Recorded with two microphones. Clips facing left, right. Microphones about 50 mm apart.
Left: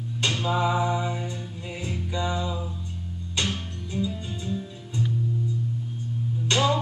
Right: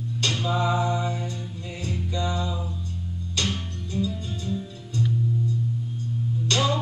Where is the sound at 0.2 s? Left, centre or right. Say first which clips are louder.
Left 1 dB; centre.